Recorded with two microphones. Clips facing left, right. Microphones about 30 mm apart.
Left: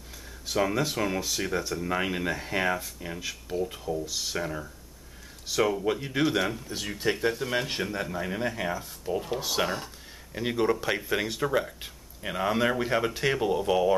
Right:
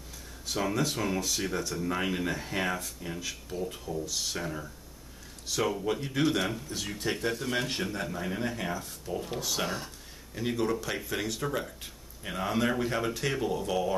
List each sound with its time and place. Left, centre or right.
0.5 s speech: centre